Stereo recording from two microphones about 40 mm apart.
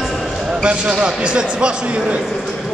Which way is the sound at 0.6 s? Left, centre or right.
Right.